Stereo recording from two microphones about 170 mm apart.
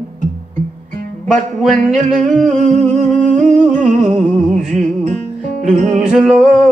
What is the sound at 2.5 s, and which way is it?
Humming, 45° right (ahead or behind).